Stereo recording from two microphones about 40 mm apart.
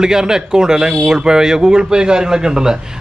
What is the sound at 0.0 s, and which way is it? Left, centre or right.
A man's voice, centre.